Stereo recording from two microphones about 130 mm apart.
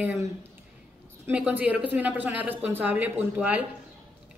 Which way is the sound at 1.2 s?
10° right (ahead or behind).